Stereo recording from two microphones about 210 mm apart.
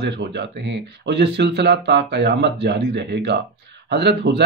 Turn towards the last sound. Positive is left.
turn(degrees=-55)  # may be behind; listen again after turning